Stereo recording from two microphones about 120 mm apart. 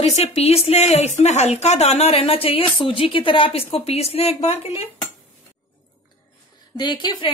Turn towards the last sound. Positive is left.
turn(degrees=40)  # may be behind; listen again after turning